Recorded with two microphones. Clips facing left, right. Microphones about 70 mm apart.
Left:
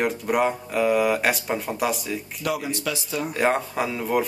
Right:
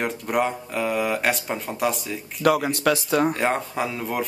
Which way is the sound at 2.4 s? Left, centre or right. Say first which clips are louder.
Right 8 dB; right.